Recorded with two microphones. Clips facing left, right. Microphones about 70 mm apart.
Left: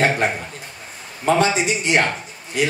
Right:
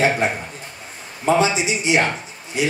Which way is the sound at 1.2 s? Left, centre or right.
Left.